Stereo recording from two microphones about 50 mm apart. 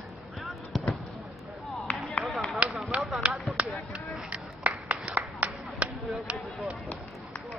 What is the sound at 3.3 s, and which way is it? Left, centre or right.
Basketball bounce, centre.